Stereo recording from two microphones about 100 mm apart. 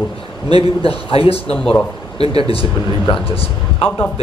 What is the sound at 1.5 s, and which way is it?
Speech, 10° left (ahead or behind).